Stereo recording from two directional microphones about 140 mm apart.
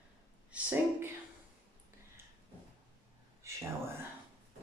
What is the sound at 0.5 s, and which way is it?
Speech, 10° right (ahead or behind).